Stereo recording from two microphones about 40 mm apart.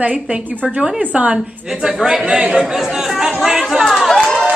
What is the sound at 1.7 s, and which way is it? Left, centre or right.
Speech, centre.